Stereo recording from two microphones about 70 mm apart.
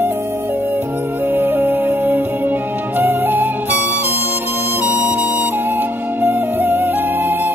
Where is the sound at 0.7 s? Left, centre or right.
Right.